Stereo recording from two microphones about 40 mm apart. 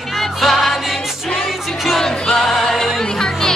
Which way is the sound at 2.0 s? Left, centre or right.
Centre.